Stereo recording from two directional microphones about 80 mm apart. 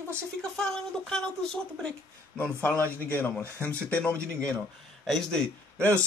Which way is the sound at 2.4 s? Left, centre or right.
Left.